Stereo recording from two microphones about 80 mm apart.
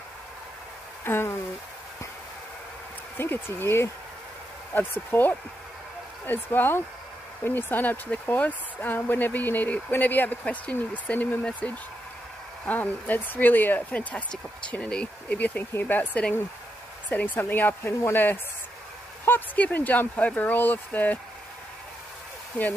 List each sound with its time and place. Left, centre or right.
1.0 s speech: left
3.2 s speech: left